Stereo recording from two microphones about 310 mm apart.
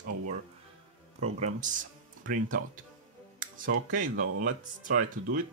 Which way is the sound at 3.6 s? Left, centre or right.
Right.